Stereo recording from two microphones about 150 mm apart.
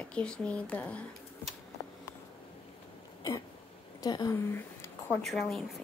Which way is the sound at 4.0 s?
25° left (ahead or behind).